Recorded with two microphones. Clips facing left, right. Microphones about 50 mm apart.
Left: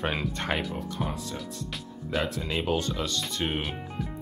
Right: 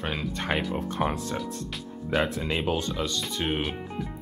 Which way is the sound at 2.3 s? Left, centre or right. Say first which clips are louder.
Right 1 dB; centre.